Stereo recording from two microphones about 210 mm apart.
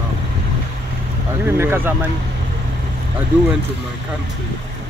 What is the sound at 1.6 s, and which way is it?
Speech, 10° right (ahead or behind).